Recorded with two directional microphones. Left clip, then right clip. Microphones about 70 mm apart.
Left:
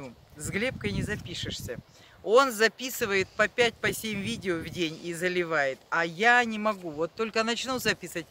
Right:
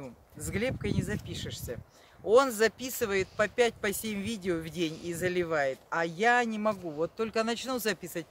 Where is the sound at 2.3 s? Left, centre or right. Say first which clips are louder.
Left 2 dB; right.